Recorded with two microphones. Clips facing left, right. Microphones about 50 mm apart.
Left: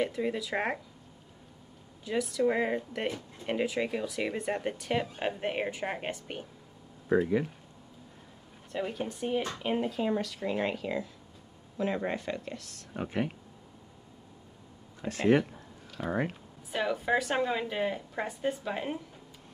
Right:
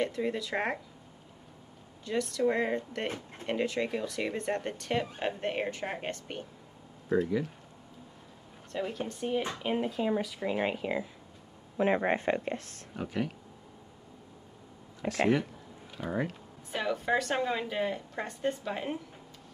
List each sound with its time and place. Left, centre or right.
0.0 s speech: centre
2.0 s speech: centre
8.7 s speech: centre
11.7 s speech: right
12.9 s speech: left
15.0 s speech: right
16.1 s speech: left
16.7 s speech: centre